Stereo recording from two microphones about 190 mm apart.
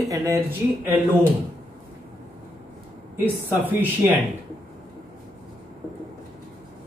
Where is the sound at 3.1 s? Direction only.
10° right (ahead or behind).